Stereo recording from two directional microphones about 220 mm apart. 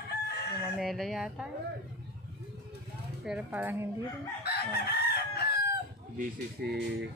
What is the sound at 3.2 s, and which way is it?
Speech, 5° right (ahead or behind).